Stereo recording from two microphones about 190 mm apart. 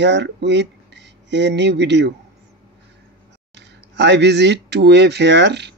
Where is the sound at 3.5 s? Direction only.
65° right (ahead or behind).